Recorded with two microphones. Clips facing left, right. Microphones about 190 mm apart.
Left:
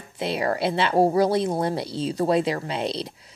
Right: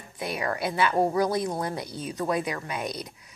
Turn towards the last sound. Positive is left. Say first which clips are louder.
# left 5 dB
turn(degrees=30)  # may be behind; listen again after turning